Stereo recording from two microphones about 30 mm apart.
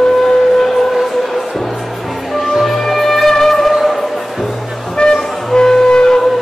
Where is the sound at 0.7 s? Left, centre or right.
Centre.